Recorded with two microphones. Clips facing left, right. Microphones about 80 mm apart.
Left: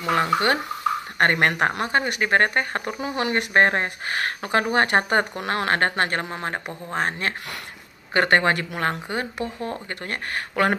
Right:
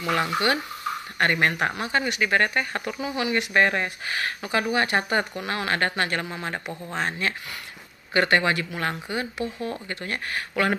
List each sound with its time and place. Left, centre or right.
0.0 s speech: left